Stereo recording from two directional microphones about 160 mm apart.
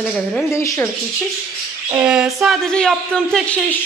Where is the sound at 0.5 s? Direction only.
15° left (ahead or behind).